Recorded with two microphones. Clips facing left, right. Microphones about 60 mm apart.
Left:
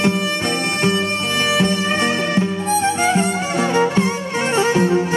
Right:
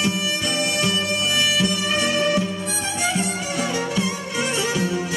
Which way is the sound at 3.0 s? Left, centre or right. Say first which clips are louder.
Left 6 dB; left.